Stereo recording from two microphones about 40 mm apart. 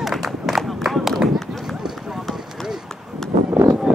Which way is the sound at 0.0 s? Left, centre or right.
Centre.